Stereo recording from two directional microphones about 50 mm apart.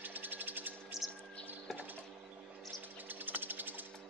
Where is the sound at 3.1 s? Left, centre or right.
Right.